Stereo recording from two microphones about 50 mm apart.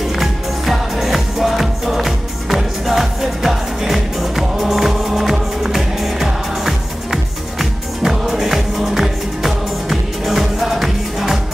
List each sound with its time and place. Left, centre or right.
0.1 s music: centre